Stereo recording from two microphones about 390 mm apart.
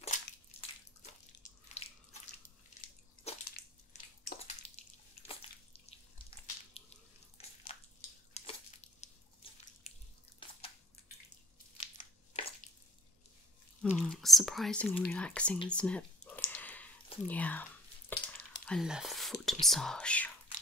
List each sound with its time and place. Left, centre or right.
0.0 s crushing: centre
1.8 s bathtub: centre
3.3 s drip: left
7.7 s a sound: centre
8.3 s drip: centre
10.4 s a sound: centre
11.7 s squish: centre
13.8 s speech: centre
18.1 s sizzle: centre
18.7 s speech: centre